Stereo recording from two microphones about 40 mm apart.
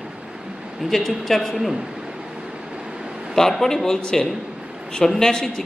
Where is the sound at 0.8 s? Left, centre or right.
Centre.